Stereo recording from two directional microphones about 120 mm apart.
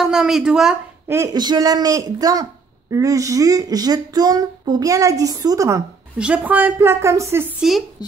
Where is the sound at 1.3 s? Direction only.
35° right (ahead or behind).